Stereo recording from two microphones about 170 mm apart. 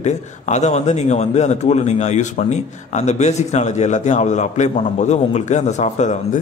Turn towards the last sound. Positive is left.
turn(degrees=45)  # may be behind; listen again after turning